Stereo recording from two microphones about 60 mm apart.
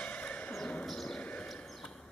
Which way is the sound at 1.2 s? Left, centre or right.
Centre.